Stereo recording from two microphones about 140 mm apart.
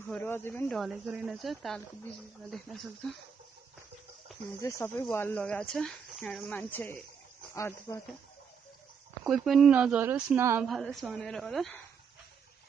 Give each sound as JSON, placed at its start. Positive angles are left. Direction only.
{"t": 0.1, "sound": "speech", "side_deg": 15}
{"t": 0.7, "sound": "a woman's voice", "side_deg": -5}
{"t": 4.6, "sound": "speech", "side_deg": 20}
{"t": 9.2, "sound": "speech", "side_deg": 0}
{"t": 10.6, "sound": "a woman's voice", "side_deg": 0}